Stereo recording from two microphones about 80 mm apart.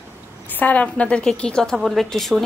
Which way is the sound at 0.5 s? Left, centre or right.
Left.